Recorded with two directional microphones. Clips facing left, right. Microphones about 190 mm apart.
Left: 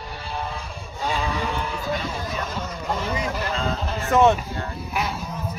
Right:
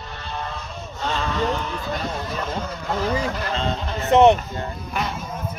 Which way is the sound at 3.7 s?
5° left (ahead or behind).